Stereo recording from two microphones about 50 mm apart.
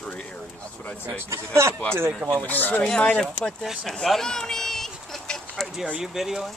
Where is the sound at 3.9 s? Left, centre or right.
Centre.